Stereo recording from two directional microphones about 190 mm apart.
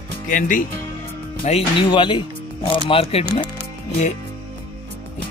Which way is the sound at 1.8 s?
25° left (ahead or behind).